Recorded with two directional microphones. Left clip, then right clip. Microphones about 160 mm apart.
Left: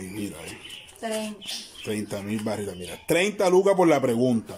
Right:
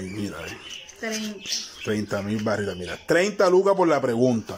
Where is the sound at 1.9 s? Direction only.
10° left (ahead or behind).